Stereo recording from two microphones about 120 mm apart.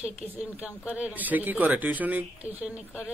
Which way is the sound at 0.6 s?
10° right (ahead or behind).